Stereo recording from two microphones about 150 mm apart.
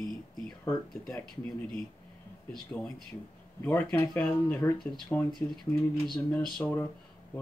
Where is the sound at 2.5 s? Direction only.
5° left (ahead or behind).